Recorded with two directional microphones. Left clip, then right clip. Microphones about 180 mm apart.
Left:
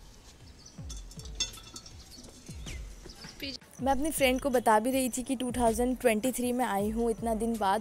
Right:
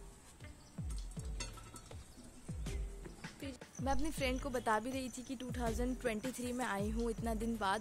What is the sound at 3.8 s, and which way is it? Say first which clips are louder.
Speech: left 10 dB; 25° left (ahead or behind).